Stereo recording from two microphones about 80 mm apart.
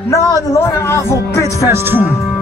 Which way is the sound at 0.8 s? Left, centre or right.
Left.